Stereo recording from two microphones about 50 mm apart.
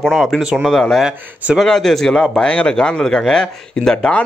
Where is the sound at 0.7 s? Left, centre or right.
Centre.